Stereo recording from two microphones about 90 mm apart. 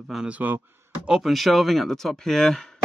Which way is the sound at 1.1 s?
Centre (ahead or behind).